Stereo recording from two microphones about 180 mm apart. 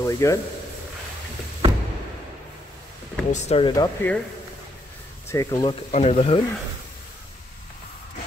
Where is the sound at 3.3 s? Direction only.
40° left (ahead or behind).